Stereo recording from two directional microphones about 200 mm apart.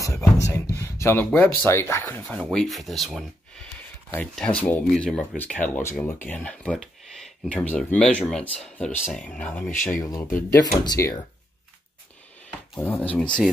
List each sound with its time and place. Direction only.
0.0 s beatboxing: 15° left (ahead or behind)
0.7 s speech: 15° left (ahead or behind)
12.4 s speech: 10° left (ahead or behind)